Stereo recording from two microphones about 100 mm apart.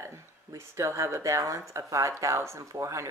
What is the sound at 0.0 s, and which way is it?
Speech, 30° right (ahead or behind).